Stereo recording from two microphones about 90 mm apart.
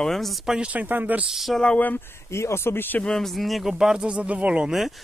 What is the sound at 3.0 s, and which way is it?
Speech, 5° left (ahead or behind).